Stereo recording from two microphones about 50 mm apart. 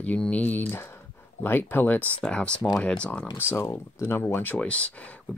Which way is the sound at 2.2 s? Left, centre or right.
Centre.